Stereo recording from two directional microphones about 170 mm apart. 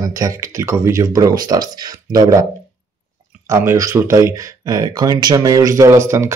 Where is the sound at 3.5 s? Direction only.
15° right (ahead or behind).